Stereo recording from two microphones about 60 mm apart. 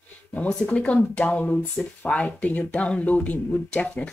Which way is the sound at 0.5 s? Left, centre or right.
Centre.